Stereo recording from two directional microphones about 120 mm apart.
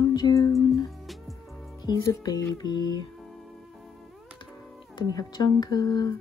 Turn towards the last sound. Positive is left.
turn(degrees=30)  # may be behind; listen again after turning